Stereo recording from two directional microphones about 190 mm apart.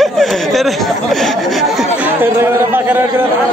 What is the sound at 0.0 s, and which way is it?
Chatter, centre (ahead or behind).